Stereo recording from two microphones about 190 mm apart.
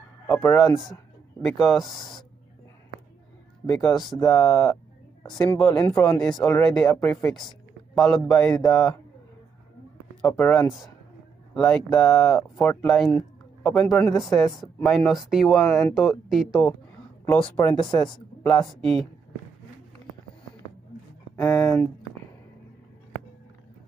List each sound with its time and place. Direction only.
0.3 s speech: 10° left (ahead or behind)
1.5 s speech: centre (ahead or behind)
3.6 s speech: 5° left (ahead or behind)
5.2 s speech: 15° left (ahead or behind)
10.2 s speech: 10° left (ahead or behind)
17.3 s speech: 10° left (ahead or behind)
17.7 s speech: 20° left (ahead or behind)
18.4 s speech: 10° left (ahead or behind)
21.4 s speech: 15° left (ahead or behind)